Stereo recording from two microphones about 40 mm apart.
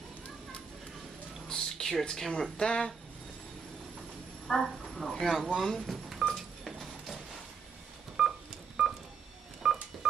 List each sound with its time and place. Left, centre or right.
1.5 s a sound: centre
1.9 s speech: centre
2.5 s speech: left
4.5 s speech: centre
6.2 s telephone dialing: centre
8.2 s telephone dialing: centre
9.6 s telephone dialing: centre